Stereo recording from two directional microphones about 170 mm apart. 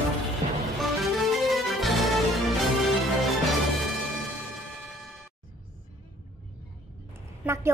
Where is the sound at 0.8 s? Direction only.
Centre (ahead or behind).